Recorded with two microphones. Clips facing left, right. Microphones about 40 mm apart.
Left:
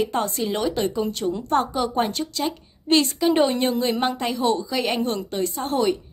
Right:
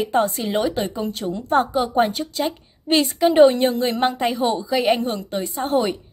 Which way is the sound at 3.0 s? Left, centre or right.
Centre.